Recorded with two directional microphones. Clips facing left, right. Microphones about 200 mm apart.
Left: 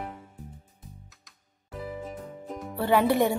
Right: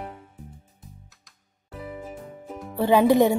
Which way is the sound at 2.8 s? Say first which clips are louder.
Right 5 dB; 15° right (ahead or behind).